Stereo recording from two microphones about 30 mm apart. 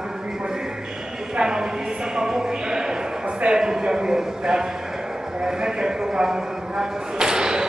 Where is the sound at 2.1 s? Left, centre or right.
Right.